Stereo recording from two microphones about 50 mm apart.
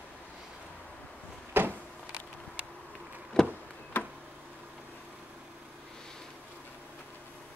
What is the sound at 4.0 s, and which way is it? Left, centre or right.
Tick-tock, left.